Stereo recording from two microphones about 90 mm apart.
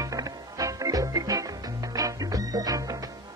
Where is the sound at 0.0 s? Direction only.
40° right (ahead or behind).